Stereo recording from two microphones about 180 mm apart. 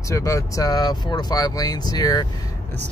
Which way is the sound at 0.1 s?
15° left (ahead or behind).